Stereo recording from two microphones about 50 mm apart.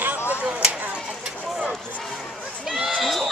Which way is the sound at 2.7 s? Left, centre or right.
Centre.